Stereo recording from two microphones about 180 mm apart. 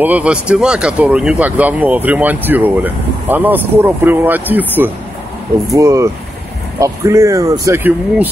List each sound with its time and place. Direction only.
0.0 s speech: 10° right (ahead or behind)